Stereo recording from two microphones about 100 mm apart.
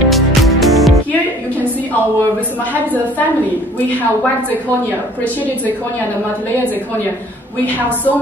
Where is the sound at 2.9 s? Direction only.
15° left (ahead or behind).